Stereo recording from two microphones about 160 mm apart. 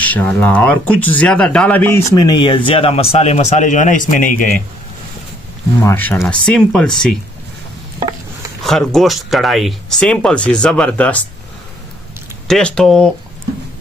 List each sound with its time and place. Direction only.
0.0 s speech: 10° left (ahead or behind)
2.1 s a man's voice: 25° left (ahead or behind); by 4.5 s 55° left (ahead or behind)
5.9 s speech: 15° left (ahead or behind)
8.6 s speech: centre (ahead or behind)
12.4 s speech: 5° left (ahead or behind)